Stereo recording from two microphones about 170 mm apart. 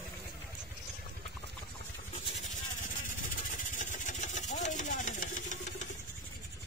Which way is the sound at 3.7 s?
50° left (ahead or behind).